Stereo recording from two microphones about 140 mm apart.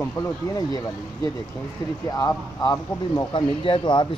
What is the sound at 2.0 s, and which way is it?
Speech, 20° left (ahead or behind).